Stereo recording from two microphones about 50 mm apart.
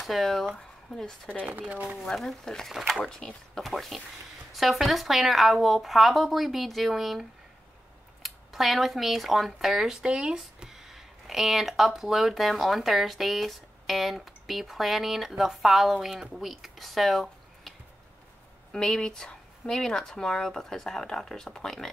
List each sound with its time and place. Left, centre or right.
0.0 s speech: centre
1.4 s speech: right
2.0 s speech: centre